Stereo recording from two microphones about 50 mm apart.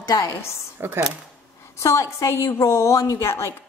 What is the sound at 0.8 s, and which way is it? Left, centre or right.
Speech, right.